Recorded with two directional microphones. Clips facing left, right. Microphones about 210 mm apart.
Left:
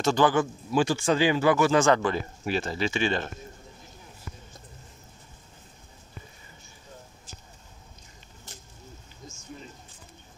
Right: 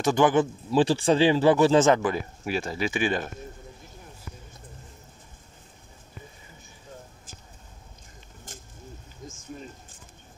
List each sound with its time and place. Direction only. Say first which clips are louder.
0.0 s a man's voice: right 2 dB; 15° right (ahead or behind)
2.0 s speech: right 1 dB; 5° right (ahead or behind)
8.5 s a sound: right 3 dB; 50° right (ahead or behind)